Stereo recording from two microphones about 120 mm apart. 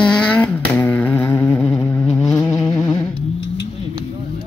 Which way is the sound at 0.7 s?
15° left (ahead or behind).